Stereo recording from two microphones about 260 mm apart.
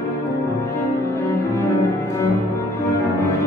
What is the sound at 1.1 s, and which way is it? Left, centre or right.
Cello, centre.